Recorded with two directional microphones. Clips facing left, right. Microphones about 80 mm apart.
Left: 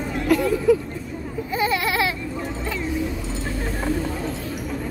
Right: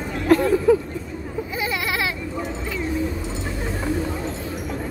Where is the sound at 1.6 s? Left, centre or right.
Centre.